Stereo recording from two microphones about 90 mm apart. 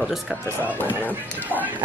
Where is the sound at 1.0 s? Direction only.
20° left (ahead or behind).